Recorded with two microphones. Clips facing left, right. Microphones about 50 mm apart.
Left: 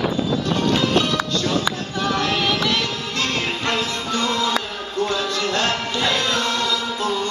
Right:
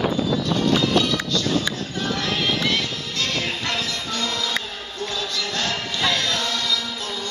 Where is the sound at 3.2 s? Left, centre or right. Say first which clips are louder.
Left 2 dB; left.